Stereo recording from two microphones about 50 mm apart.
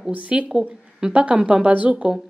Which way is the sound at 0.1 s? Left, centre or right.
Right.